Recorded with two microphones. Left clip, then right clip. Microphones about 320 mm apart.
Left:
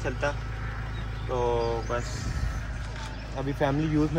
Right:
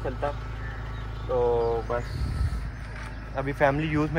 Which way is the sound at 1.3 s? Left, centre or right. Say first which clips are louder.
Right 3 dB; centre.